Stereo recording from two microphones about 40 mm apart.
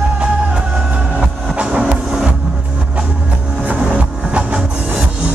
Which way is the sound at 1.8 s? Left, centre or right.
Centre.